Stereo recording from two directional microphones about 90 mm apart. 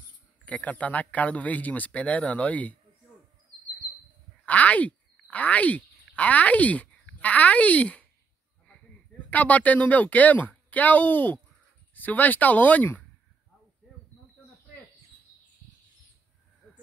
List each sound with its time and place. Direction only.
0.5 s speech: 15° left (ahead or behind)
4.5 s speech: 15° left (ahead or behind)
9.3 s speech: 15° left (ahead or behind)
16.6 s a sound: 15° left (ahead or behind)